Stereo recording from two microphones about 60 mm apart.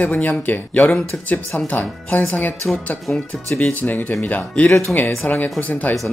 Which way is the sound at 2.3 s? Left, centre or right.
Left.